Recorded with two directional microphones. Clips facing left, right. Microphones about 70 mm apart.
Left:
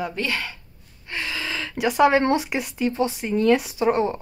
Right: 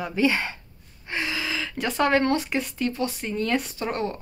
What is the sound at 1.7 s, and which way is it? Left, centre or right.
Speech, centre.